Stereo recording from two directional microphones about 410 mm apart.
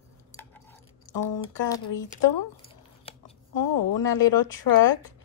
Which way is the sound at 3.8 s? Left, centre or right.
Left.